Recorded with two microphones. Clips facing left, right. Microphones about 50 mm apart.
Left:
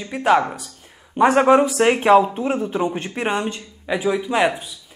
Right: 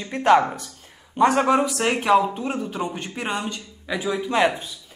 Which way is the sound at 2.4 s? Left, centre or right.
Centre.